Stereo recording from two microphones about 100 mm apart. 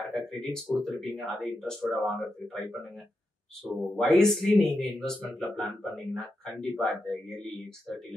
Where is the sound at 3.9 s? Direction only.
5° left (ahead or behind).